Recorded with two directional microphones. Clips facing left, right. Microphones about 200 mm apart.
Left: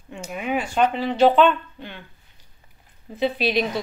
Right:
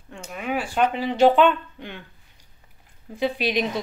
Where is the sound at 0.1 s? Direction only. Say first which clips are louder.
Left 2 dB; 5° left (ahead or behind); by 2.0 s 15° right (ahead or behind).